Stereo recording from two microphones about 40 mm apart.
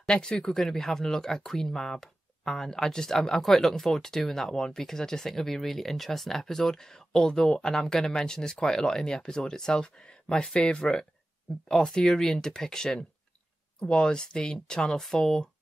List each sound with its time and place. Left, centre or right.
0.0 s speech: left
15.0 s speech: centre